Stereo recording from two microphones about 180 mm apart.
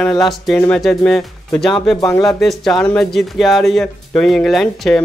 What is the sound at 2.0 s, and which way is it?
Speech, 20° left (ahead or behind).